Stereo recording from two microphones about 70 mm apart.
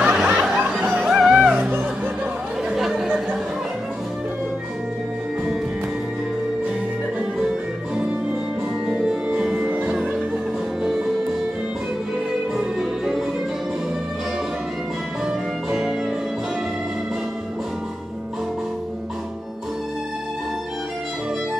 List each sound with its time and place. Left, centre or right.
0.1 s music: centre
1.5 s music: right
2.7 s chatter: centre
7.9 s music: centre
12.5 s music: centre
15.2 s music: centre